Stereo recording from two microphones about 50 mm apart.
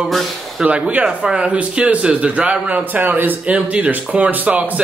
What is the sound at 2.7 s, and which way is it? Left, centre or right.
Speech, right.